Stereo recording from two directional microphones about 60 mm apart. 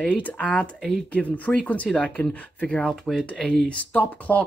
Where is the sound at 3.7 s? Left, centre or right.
Left.